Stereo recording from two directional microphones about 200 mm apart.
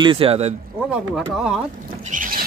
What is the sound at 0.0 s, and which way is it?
Speech, 25° right (ahead or behind).